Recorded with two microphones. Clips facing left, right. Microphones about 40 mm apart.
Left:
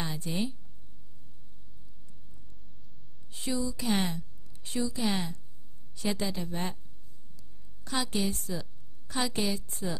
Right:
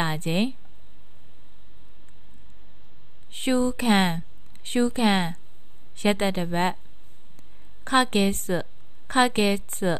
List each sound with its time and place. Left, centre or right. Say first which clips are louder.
0.0 s speech: right 8 dB; right
3.3 s a woman's voice: right 9 dB; right
7.8 s a woman's voice: right 10 dB; right